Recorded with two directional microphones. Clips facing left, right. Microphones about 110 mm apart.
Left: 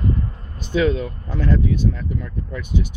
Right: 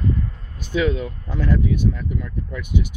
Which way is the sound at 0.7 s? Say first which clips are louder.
Left 2 dB; 10° right (ahead or behind).